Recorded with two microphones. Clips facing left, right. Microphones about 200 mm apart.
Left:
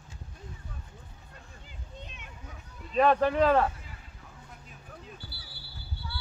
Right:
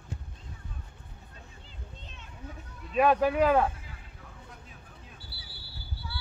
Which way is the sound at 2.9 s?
10° right (ahead or behind).